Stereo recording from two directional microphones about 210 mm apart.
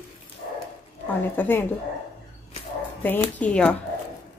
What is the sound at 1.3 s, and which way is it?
Speech, 10° left (ahead or behind).